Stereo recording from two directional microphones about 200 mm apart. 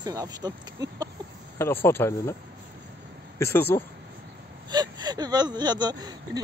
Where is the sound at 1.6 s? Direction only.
10° left (ahead or behind).